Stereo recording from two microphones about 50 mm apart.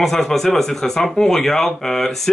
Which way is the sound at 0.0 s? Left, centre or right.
Centre.